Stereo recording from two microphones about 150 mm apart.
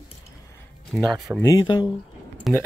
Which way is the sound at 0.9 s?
Centre (ahead or behind).